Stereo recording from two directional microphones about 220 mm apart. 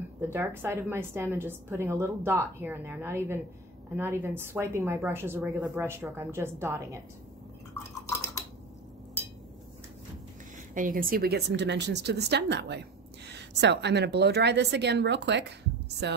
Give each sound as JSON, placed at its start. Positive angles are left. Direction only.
{"t": 0.3, "sound": "a woman's voice", "side_deg": -10}
{"t": 10.7, "sound": "a woman's voice", "side_deg": -40}